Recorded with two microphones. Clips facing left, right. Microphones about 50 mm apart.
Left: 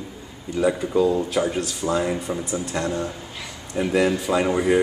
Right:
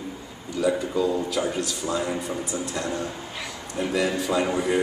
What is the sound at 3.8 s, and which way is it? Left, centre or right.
Speech, centre.